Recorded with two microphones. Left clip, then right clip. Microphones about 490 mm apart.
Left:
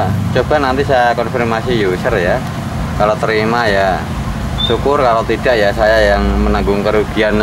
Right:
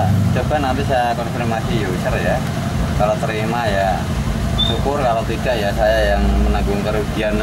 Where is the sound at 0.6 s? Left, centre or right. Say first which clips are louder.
Left 6 dB; left.